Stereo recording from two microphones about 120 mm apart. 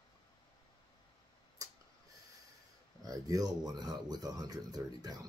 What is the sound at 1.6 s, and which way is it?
Tick-tock, 30° right (ahead or behind).